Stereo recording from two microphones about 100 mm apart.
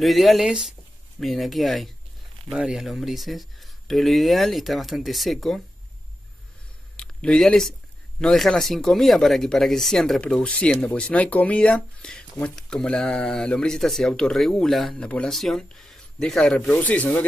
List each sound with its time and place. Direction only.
0.0 s speech: centre (ahead or behind)
7.0 s speech: 10° left (ahead or behind)